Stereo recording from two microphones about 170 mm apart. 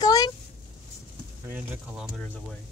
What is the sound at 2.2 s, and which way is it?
Speech, 5° left (ahead or behind).